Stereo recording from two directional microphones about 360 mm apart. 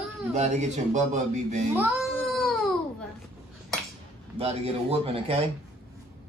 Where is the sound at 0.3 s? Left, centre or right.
Centre.